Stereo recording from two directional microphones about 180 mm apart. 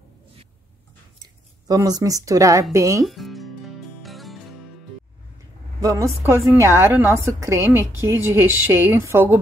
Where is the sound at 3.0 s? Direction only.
Centre (ahead or behind).